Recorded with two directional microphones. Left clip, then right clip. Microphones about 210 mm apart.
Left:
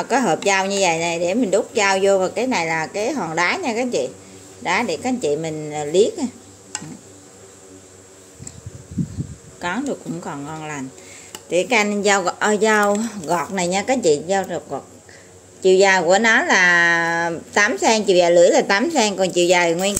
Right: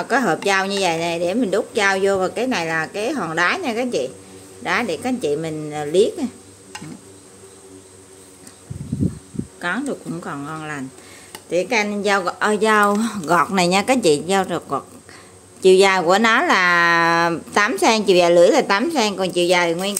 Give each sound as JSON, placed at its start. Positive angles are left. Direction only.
{"t": 0.0, "sound": "a woman's voice", "side_deg": 0}
{"t": 9.6, "sound": "a woman's voice", "side_deg": 0}
{"t": 11.5, "sound": "a woman's voice", "side_deg": 5}
{"t": 13.3, "sound": "speech", "side_deg": -15}